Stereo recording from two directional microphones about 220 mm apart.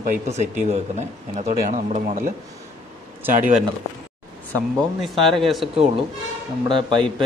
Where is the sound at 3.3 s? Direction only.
35° right (ahead or behind).